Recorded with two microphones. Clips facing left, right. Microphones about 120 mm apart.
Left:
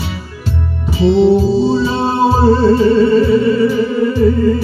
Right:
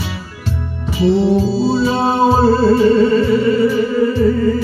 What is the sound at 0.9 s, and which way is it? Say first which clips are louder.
Music: left 3 dB; 25° left (ahead or behind).